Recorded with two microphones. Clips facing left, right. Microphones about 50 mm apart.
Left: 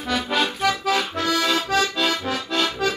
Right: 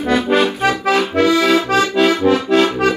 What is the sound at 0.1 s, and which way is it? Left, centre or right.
Accordion, right.